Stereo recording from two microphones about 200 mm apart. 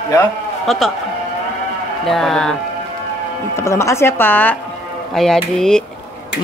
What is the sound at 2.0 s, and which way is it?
Speech, centre (ahead or behind).